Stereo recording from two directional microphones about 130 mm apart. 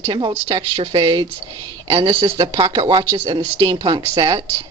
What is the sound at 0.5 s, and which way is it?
Speech, 40° right (ahead or behind).